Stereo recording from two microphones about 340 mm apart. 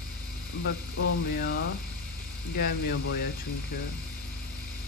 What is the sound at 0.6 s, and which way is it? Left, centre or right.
Speech, left.